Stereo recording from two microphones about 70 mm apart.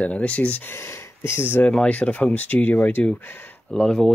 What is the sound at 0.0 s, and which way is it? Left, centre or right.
Speech, centre.